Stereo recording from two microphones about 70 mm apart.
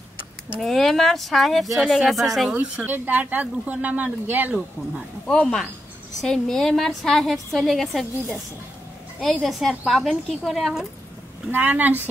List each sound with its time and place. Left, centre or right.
0.6 s speech: centre
2.7 s speech: right
5.2 s speech: centre
9.2 s speech: centre
11.5 s speech: right